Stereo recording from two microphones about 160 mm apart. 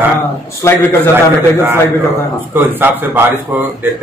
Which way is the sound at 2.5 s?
15° right (ahead or behind).